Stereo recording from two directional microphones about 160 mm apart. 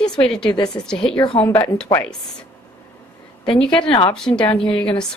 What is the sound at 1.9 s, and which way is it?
Speech, 20° left (ahead or behind).